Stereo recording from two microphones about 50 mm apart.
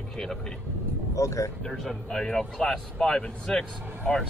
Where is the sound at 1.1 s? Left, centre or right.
Left.